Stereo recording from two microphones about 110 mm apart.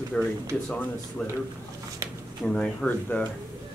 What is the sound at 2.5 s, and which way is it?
Speech, 10° left (ahead or behind).